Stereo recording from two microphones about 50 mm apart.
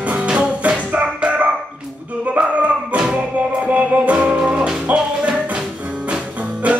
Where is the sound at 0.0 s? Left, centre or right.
Right.